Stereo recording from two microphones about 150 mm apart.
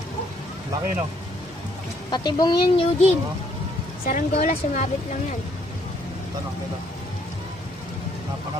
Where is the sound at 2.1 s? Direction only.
30° left (ahead or behind).